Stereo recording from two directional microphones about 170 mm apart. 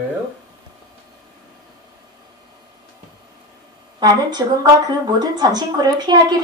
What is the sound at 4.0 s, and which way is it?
A woman's voice, 25° right (ahead or behind).